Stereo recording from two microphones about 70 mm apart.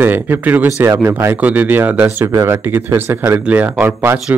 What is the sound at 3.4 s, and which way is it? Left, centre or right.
Speech, right.